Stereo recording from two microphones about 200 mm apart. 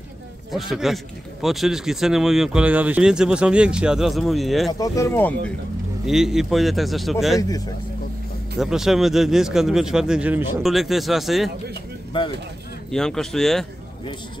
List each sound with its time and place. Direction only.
0.5 s speech: centre (ahead or behind)
4.7 s speech: 15° left (ahead or behind)
6.0 s speech: centre (ahead or behind)
7.3 s speech: 20° left (ahead or behind)
8.5 s speech: centre (ahead or behind)
12.1 s speech: 25° left (ahead or behind)
12.9 s speech: centre (ahead or behind)